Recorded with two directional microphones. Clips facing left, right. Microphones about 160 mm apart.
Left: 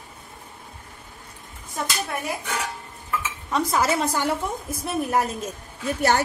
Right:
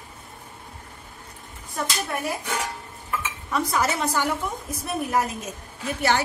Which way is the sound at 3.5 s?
25° left (ahead or behind).